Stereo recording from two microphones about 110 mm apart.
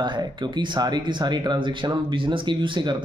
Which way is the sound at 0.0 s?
45° right (ahead or behind).